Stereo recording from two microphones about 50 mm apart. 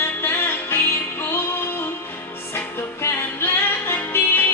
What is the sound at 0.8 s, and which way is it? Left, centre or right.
Music, left.